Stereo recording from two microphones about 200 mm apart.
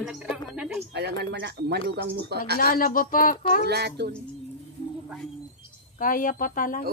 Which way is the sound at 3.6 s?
55° right (ahead or behind).